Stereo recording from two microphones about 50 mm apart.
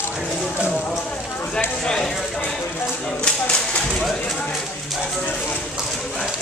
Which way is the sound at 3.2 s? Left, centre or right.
Left.